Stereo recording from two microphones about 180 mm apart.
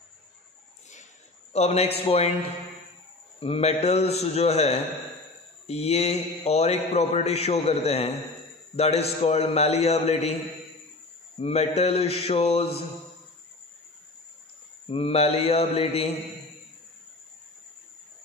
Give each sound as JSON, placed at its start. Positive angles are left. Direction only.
{"t": 1.5, "sound": "mantra", "side_deg": 35}
{"t": 3.3, "sound": "mantra", "side_deg": 30}
{"t": 11.3, "sound": "mantra", "side_deg": 35}
{"t": 14.9, "sound": "mantra", "side_deg": 30}